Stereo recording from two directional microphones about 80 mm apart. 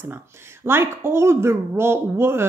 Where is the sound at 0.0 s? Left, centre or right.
Right.